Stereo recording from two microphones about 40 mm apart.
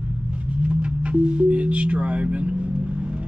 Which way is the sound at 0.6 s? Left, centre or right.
Right.